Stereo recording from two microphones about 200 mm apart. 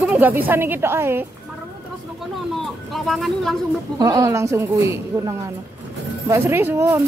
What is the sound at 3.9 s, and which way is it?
Speech, 20° right (ahead or behind).